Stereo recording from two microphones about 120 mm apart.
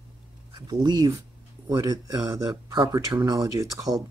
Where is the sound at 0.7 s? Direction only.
35° right (ahead or behind).